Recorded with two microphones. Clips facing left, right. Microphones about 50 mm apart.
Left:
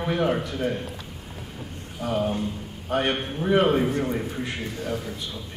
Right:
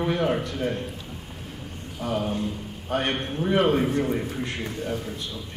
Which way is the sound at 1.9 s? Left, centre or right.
Centre.